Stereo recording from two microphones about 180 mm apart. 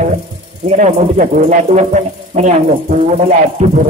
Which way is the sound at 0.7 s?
40° right (ahead or behind).